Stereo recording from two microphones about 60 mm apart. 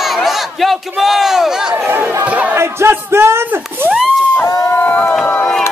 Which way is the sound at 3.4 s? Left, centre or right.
Right.